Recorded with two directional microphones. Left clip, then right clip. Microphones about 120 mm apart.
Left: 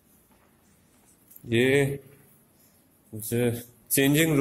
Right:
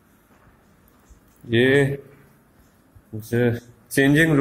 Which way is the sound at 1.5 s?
25° left (ahead or behind).